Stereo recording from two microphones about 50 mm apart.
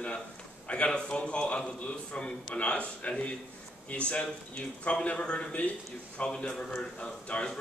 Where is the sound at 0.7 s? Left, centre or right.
Left.